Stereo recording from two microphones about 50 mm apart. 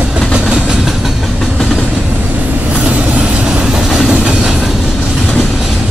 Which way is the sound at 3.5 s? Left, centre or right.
Centre.